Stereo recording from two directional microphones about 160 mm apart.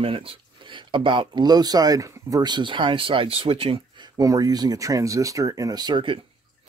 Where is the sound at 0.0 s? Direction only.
35° right (ahead or behind).